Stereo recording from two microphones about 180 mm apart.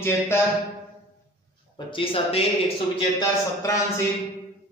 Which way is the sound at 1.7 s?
30° left (ahead or behind).